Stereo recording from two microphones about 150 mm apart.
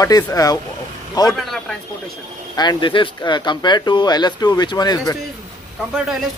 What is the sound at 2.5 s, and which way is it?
Speech, 30° left (ahead or behind).